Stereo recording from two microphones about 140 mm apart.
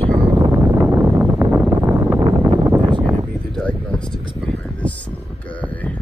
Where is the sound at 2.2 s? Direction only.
40° right (ahead or behind).